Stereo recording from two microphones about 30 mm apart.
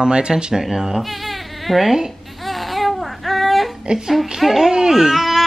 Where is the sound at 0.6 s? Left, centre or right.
Centre.